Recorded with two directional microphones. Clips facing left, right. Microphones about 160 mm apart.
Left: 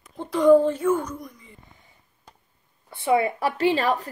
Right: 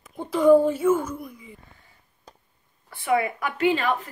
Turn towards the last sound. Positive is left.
turn(degrees=35)  # may be behind; listen again after turning